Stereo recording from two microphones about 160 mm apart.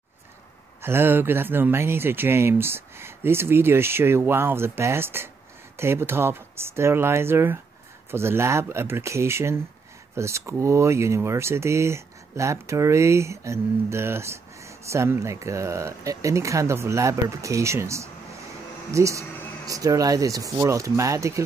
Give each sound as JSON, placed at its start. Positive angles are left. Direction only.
{"t": 0.8, "sound": "speech", "side_deg": -15}